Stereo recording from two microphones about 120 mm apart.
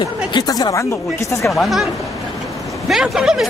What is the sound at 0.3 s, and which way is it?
Speech, 30° left (ahead or behind).